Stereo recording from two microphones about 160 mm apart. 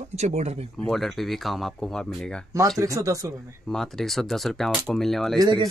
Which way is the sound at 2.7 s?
20° right (ahead or behind).